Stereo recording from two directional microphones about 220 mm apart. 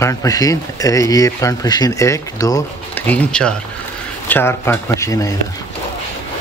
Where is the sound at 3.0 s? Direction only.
5° left (ahead or behind).